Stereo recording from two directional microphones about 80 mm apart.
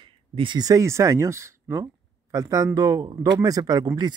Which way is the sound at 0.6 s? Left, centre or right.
Right.